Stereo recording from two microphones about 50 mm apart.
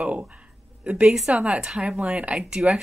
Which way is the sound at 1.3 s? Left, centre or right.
Right.